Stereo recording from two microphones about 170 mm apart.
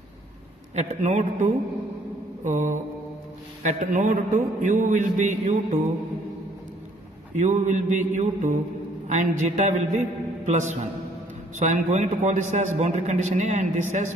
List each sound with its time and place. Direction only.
0.7 s a man's voice: 45° right (ahead or behind)
7.3 s a man's voice: 45° right (ahead or behind)